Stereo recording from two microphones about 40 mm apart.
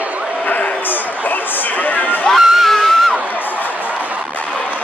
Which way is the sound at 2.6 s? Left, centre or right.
Centre.